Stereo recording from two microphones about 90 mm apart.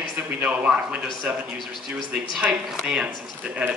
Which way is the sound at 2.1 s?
10° right (ahead or behind).